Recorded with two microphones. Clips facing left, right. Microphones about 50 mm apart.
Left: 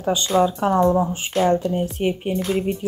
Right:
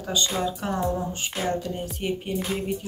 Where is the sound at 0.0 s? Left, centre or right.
Left.